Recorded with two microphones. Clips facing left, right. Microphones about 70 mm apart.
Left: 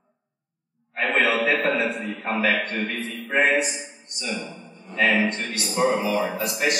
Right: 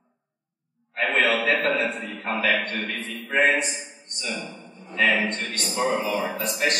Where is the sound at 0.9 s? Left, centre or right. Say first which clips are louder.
Left 1 dB; centre.